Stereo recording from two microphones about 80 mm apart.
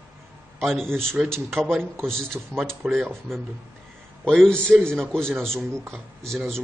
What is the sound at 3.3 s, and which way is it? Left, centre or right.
Speech, right.